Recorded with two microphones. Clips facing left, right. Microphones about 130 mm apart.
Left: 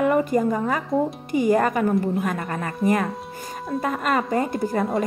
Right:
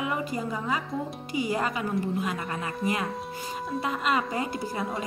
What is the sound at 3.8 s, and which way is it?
Speech, 50° left (ahead or behind).